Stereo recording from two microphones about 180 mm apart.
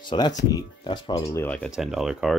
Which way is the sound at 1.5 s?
Centre (ahead or behind).